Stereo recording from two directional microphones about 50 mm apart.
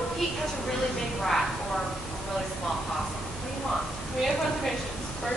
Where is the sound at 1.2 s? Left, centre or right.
Centre.